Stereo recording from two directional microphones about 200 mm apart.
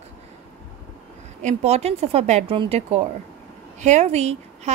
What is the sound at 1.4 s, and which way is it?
Speech, 35° right (ahead or behind).